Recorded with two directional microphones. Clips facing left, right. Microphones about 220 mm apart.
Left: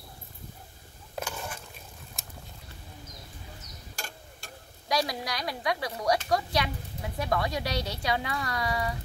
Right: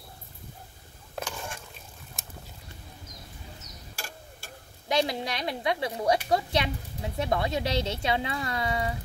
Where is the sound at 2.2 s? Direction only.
Centre (ahead or behind).